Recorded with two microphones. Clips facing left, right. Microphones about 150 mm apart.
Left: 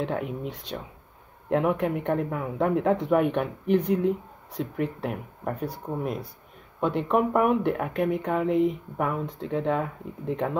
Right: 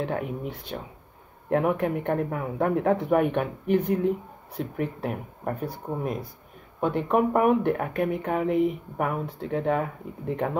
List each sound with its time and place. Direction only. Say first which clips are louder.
0.0 s speech: even; 5° right (ahead or behind)
6.8 s speech: right 1 dB; 5° right (ahead or behind)